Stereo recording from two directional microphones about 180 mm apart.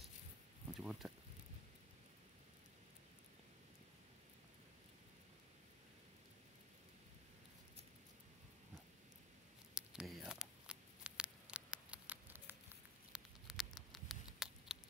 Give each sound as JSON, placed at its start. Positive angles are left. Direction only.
{"t": 0.7, "sound": "speech", "side_deg": 0}
{"t": 9.8, "sound": "a sound", "side_deg": -5}
{"t": 13.1, "sound": "patter", "side_deg": 0}